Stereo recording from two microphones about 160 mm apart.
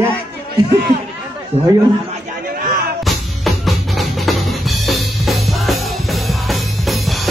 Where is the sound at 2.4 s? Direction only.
65° right (ahead or behind).